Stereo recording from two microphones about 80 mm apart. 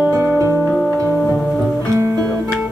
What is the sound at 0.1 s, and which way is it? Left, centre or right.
Music, right.